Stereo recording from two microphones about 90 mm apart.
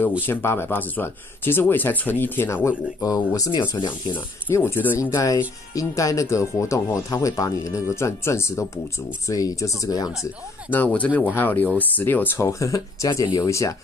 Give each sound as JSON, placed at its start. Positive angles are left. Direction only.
{"t": 0.3, "sound": "speech", "side_deg": 25}
{"t": 3.0, "sound": "speech", "side_deg": 45}
{"t": 4.1, "sound": "speech", "side_deg": 25}
{"t": 11.1, "sound": "speech", "side_deg": 20}
{"t": 12.4, "sound": "speech", "side_deg": 35}